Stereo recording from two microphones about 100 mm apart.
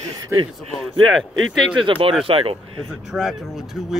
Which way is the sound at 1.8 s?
60° right (ahead or behind).